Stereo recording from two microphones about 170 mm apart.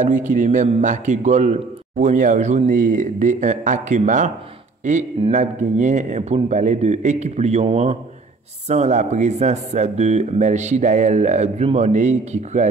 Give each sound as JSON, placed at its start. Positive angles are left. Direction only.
{"t": 0.4, "sound": "a man's voice", "side_deg": -50}